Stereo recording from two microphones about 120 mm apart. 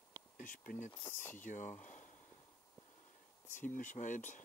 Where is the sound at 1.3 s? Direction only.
90° left.